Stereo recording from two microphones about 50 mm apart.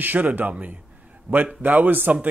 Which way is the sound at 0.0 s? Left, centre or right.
Right.